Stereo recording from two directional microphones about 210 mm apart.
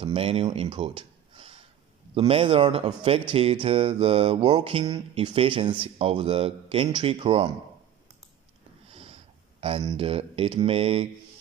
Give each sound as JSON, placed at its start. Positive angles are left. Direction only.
{"t": 0.0, "sound": "speech", "side_deg": -25}
{"t": 8.9, "sound": "speech", "side_deg": -30}